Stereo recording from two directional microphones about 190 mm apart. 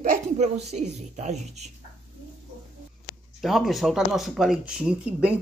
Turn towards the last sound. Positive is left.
turn(degrees=-5)  # may be behind; listen again after turning